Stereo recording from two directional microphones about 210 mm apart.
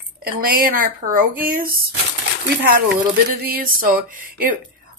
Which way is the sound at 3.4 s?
45° right (ahead or behind).